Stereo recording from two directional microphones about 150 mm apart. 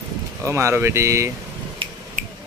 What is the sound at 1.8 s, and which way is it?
Finger snapping, 35° right (ahead or behind).